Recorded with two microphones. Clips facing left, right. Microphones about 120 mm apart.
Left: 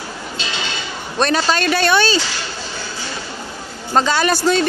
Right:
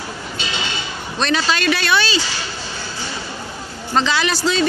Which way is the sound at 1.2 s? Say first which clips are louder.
Left 2 dB; 45° left (ahead or behind).